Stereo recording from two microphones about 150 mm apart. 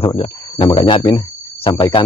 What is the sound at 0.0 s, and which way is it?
Speech, 40° left (ahead or behind).